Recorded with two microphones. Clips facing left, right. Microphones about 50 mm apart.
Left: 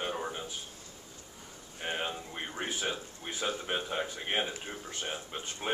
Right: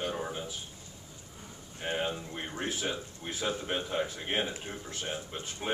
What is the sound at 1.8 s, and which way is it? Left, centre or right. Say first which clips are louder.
Speech: right 2 dB; centre.